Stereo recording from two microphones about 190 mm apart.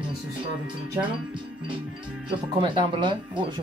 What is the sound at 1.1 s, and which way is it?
Speech, 25° right (ahead or behind).